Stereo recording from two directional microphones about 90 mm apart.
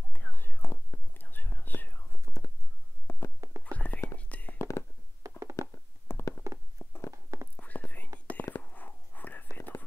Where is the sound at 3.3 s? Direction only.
35° right (ahead or behind).